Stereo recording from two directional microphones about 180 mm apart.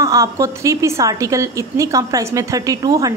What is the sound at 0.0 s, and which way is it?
Speech, 20° right (ahead or behind).